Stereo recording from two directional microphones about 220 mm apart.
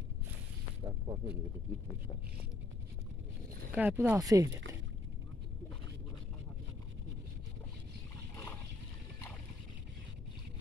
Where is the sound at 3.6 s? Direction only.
10° right (ahead or behind).